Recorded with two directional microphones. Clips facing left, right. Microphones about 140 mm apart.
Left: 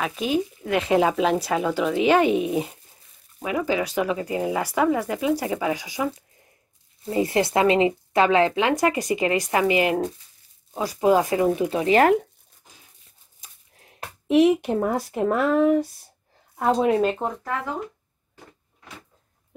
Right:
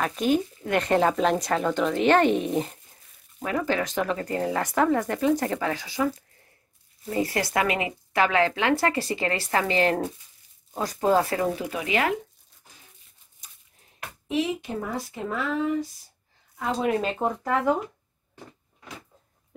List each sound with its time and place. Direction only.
0.0 s speech: 5° left (ahead or behind); by 11.8 s 20° left (ahead or behind)
11.8 s speech: 40° left (ahead or behind)
14.2 s speech: 70° left (ahead or behind)
16.8 s speech: centre (ahead or behind)